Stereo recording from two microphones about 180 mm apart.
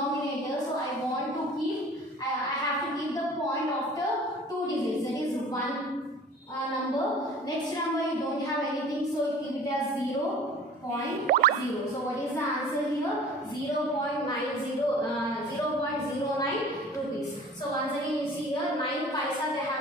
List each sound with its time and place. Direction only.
11.3 s music: 55° right (ahead or behind)